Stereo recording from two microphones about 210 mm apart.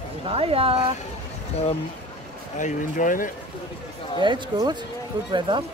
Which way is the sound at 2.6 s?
40° left (ahead or behind).